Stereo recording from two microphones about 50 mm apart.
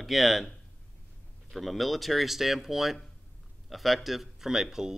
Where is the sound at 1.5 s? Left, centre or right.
Centre.